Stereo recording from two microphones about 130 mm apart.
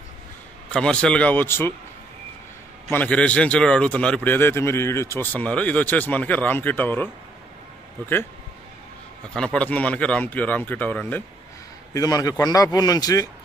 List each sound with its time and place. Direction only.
0.7 s a man's voice: 5° left (ahead or behind)
2.9 s a man's voice: 10° left (ahead or behind)
9.3 s a man's voice: 5° left (ahead or behind)
11.9 s a man's voice: 25° left (ahead or behind)